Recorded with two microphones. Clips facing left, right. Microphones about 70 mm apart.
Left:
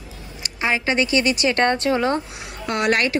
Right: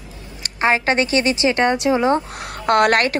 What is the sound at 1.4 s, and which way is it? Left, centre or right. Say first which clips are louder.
Speech: right 2 dB; centre.